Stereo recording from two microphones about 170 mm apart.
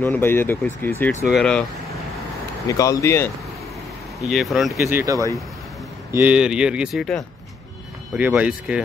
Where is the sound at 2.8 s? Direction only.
20° left (ahead or behind).